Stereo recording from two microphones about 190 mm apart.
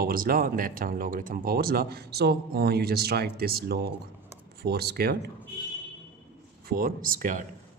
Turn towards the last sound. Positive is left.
turn(degrees=-45)  # may be behind; listen again after turning